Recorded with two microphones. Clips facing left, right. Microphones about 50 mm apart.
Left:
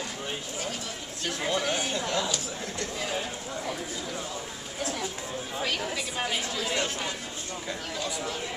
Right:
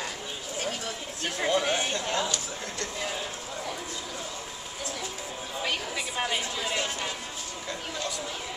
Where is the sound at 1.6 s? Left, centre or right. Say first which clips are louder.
Right 1 dB; right.